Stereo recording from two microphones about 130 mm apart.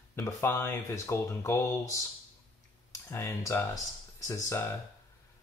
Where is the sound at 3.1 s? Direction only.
20° left (ahead or behind).